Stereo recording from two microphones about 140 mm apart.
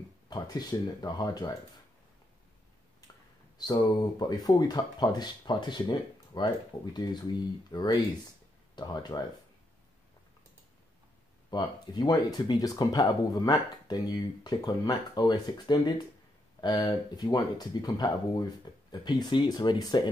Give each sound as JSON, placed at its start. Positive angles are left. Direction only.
{"t": 0.3, "sound": "speech", "side_deg": 30}
{"t": 3.5, "sound": "speech", "side_deg": 30}
{"t": 11.5, "sound": "speech", "side_deg": 30}